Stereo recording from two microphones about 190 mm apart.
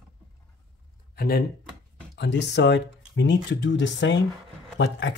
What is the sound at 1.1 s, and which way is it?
Speech, 55° left (ahead or behind).